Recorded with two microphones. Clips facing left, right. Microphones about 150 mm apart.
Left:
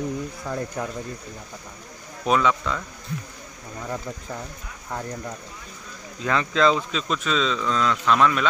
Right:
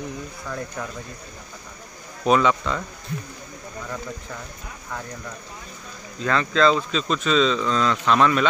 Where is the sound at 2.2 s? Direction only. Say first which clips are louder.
Right 2 dB; centre (ahead or behind).